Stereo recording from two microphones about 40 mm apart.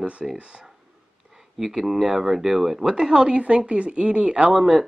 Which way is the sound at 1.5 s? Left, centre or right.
Centre.